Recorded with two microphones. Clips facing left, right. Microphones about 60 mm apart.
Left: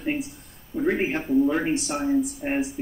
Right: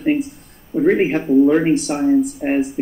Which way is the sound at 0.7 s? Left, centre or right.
Right.